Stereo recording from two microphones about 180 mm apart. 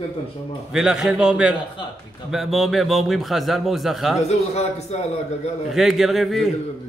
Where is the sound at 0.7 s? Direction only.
5° right (ahead or behind).